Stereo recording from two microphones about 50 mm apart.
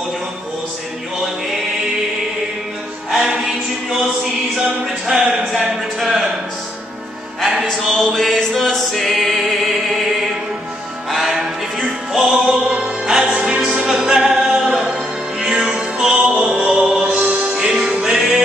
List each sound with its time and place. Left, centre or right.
3.1 s music: centre
5.0 s speech: centre
7.3 s music: centre
11.1 s music: centre
17.0 s music: right
17.6 s music: centre